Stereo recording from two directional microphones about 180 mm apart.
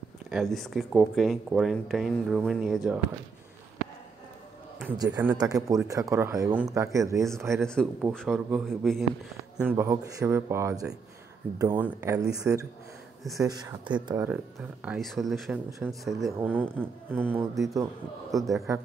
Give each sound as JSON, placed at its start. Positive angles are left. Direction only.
{"t": 0.3, "sound": "speech", "side_deg": 0}
{"t": 4.9, "sound": "speech", "side_deg": -20}
{"t": 7.6, "sound": "speech", "side_deg": 5}
{"t": 9.6, "sound": "speech", "side_deg": -15}
{"t": 13.4, "sound": "speech", "side_deg": -20}
{"t": 14.2, "sound": "speech", "side_deg": -10}
{"t": 16.2, "sound": "speech", "side_deg": -20}